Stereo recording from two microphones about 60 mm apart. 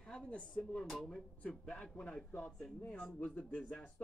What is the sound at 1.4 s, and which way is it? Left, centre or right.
Speech, left.